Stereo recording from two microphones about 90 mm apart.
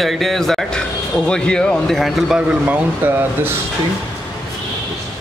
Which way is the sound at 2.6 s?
20° right (ahead or behind).